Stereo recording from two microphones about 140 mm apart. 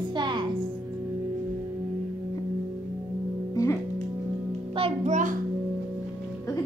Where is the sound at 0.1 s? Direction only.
35° right (ahead or behind).